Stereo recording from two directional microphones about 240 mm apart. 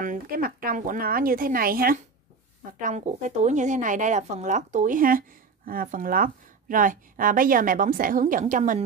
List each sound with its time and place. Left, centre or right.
0.0 s a woman's voice: right